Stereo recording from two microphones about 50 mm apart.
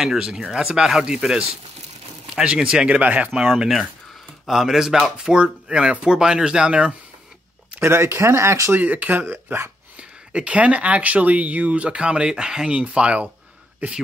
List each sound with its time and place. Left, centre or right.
0.2 s speech: centre
3.3 s speech: centre
7.8 s speech: right
8.7 s speech: right
9.9 s speech: right